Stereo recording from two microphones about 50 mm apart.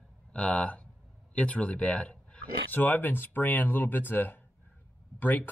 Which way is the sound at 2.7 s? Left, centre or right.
Left.